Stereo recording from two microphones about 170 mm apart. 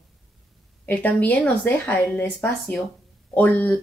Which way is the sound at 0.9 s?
10° left (ahead or behind).